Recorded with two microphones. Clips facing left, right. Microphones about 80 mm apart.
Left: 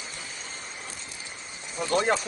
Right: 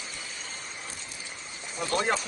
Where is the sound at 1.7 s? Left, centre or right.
Centre.